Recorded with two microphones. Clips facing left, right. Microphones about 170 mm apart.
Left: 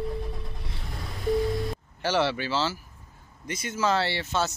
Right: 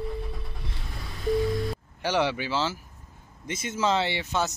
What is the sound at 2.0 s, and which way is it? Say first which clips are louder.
Speech: left 1 dB; 15° right (ahead or behind).